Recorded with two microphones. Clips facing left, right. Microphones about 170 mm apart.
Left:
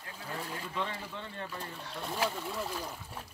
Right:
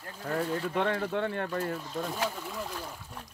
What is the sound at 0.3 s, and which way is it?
Speech, 55° right (ahead or behind).